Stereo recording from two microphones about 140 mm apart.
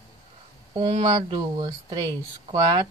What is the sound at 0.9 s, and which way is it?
Speech, 45° right (ahead or behind).